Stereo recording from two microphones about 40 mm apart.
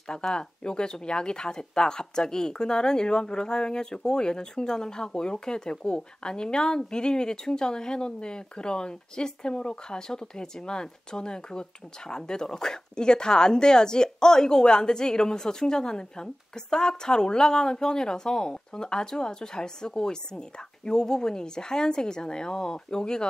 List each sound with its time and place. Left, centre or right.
0.1 s speech: left